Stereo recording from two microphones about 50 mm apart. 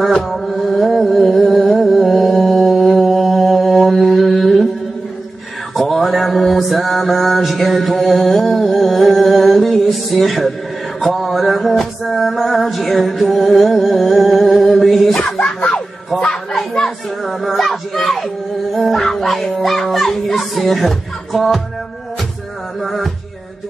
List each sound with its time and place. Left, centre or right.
0.0 s music: centre
2.4 s mantra: centre
5.8 s mantra: centre
11.0 s a sound: centre
15.3 s music: left
16.7 s a child's voice: centre
18.7 s a sound: centre
18.9 s speech: centre
22.8 s music: centre